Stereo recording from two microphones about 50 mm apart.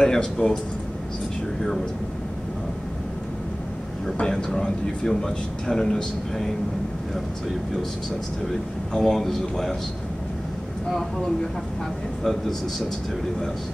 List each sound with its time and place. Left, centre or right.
0.0 s speech: centre
4.2 s speech: centre
8.9 s speech: centre
12.2 s speech: centre